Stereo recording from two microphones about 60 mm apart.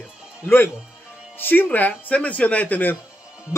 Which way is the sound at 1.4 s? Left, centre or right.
Left.